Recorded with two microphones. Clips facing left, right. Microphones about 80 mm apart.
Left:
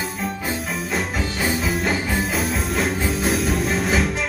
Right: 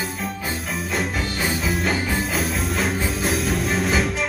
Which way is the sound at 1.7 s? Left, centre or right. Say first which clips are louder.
Even; centre.